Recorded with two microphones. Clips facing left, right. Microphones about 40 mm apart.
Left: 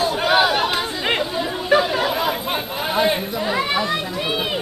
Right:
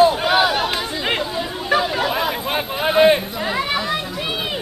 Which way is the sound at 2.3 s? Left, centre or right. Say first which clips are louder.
Right 1 dB; centre.